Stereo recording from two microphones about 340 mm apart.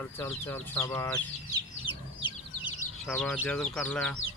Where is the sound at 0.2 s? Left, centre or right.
Centre.